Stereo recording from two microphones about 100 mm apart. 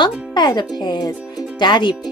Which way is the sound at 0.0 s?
50° left (ahead or behind).